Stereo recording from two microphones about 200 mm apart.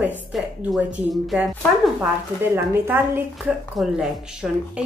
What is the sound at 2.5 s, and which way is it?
A woman's voice, 10° right (ahead or behind).